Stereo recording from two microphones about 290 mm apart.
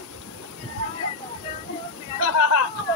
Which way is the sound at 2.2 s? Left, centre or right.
Left.